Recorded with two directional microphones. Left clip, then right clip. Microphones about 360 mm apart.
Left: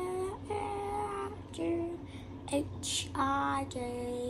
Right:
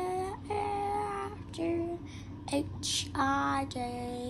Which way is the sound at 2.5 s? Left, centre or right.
Centre.